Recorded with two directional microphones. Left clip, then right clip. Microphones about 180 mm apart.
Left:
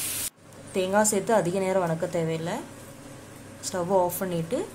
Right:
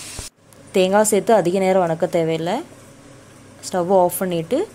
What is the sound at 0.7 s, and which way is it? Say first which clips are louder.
Speech: right 8 dB; 40° right (ahead or behind).